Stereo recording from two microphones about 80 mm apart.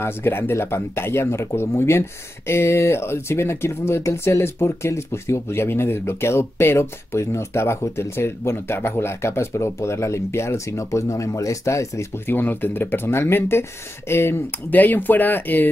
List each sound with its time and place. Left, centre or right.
0.0 s speech: left
12.4 s speech: left